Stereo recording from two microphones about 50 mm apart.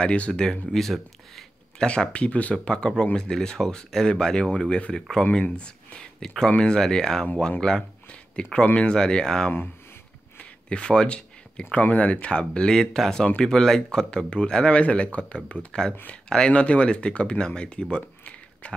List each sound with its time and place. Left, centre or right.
0.0 s speech: left
0.7 s speech: centre
1.9 s speech: left
6.1 s speech: centre
10.7 s speech: centre